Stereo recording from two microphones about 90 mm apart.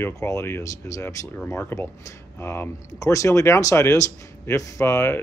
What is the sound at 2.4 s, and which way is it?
Speech, 30° left (ahead or behind).